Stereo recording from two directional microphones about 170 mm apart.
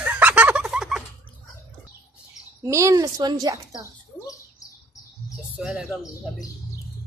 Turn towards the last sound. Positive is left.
turn(degrees=-5)  # may be behind; listen again after turning